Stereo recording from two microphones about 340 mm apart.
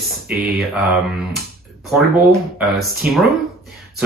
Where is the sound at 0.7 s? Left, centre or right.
Centre.